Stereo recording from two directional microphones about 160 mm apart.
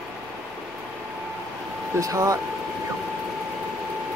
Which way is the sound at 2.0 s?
20° right (ahead or behind).